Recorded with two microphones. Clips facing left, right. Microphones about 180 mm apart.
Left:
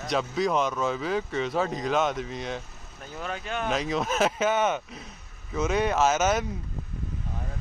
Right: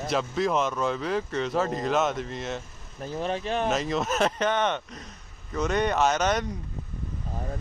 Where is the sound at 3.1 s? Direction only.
30° right (ahead or behind).